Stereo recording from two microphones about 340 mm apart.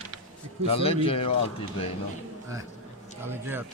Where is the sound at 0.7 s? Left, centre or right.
Centre.